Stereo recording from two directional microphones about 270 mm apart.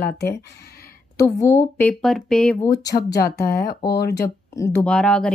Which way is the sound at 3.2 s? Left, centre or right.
Left.